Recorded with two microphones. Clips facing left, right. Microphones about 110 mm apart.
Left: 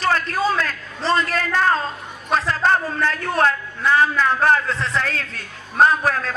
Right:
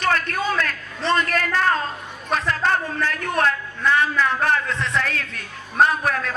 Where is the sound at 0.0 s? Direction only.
30° left (ahead or behind).